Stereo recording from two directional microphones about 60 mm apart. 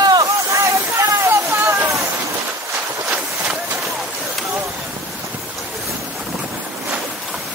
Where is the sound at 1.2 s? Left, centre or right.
Right.